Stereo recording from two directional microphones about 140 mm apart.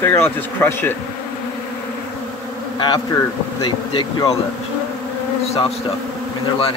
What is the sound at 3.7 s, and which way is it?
Speech, 35° left (ahead or behind).